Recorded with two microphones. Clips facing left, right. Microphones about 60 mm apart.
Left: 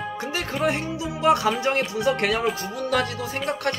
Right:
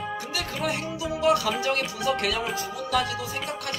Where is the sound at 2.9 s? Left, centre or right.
Left.